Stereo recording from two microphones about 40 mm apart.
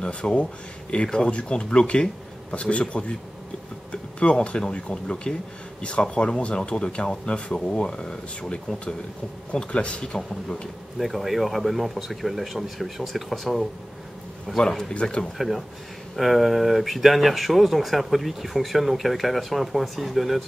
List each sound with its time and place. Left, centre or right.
0.0 s speech: left
1.0 s speech: centre
1.3 s speech: left
11.0 s speech: centre
14.6 s speech: centre
15.3 s speech: centre